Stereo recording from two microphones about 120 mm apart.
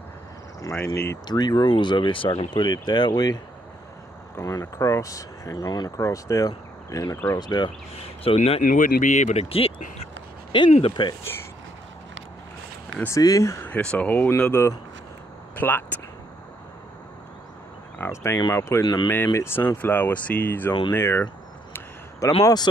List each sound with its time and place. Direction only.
0.6 s speech: 25° left (ahead or behind)
1.2 s speech: 35° left (ahead or behind)
4.4 s speech: 30° left (ahead or behind)
8.4 s speech: 75° left (ahead or behind); by 9.8 s 50° left (ahead or behind)
10.5 s speech: 40° left (ahead or behind)
13.0 s speech: 25° left (ahead or behind)
17.9 s speech: 20° left (ahead or behind)
22.4 s speech: 35° left (ahead or behind)